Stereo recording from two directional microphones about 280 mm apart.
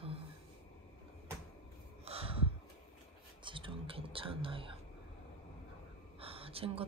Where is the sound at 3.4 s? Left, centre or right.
Centre.